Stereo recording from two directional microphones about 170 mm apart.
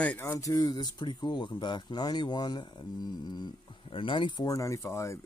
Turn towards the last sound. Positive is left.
turn(degrees=15)  # may be behind; listen again after turning